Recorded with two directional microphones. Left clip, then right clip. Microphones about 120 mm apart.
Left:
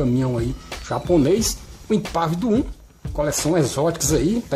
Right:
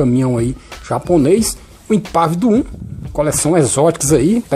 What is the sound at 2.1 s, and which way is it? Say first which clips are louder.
Speech: right 10 dB; 40° right (ahead or behind).